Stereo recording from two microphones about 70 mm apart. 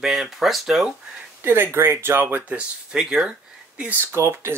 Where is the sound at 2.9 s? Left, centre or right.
Centre.